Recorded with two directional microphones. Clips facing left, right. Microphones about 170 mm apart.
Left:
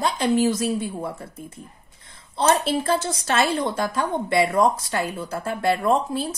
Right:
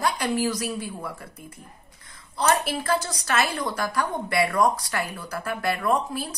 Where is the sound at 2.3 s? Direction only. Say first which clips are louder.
Left 3 dB; 25° left (ahead or behind).